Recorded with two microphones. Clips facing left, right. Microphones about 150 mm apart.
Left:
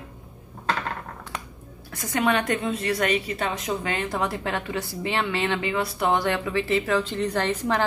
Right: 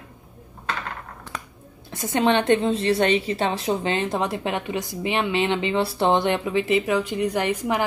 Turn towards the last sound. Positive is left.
turn(degrees=-10)  # may be behind; listen again after turning